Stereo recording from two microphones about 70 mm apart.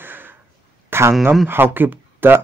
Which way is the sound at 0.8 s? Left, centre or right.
Right.